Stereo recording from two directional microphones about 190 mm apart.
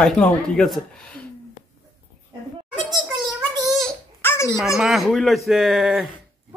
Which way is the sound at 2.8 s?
Centre (ahead or behind).